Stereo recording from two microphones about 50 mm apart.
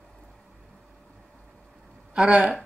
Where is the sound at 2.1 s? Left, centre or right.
Right.